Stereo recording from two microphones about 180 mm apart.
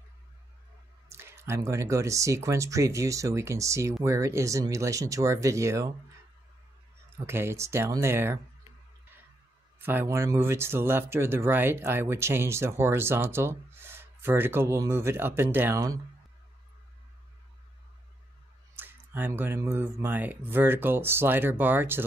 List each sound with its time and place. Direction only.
1.0 s speech: 15° right (ahead or behind)
7.2 s speech: 15° right (ahead or behind)
9.8 s speech: 10° right (ahead or behind)
18.8 s speech: 10° right (ahead or behind)